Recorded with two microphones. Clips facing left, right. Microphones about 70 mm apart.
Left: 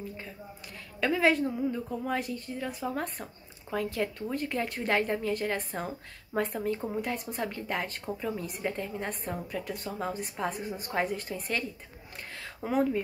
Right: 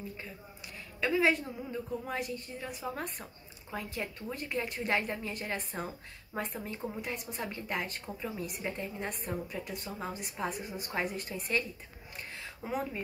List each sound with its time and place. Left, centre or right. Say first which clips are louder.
1.0 s a woman's voice: left 3 dB; left
3.7 s a woman's voice: left 7 dB; left